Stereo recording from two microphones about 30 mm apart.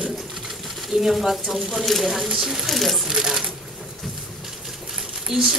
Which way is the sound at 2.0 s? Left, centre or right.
Centre.